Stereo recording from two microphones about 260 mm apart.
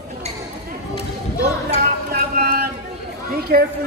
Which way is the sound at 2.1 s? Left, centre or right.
Right.